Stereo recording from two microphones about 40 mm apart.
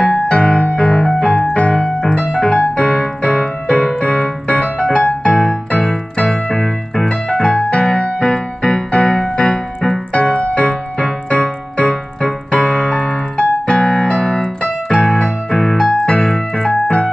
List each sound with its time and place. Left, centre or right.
0.3 s music: left
2.5 s keyboard: left
7.1 s music: left
14.4 s keyboard: left
15.5 s music: centre